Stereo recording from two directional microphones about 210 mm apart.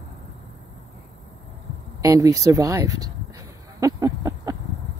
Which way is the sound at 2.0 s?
15° right (ahead or behind).